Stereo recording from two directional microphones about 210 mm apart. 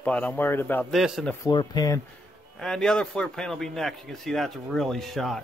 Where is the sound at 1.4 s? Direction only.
20° left (ahead or behind).